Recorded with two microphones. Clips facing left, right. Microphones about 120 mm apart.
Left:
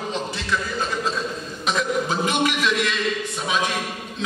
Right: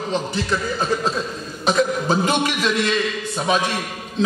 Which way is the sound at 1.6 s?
35° right (ahead or behind).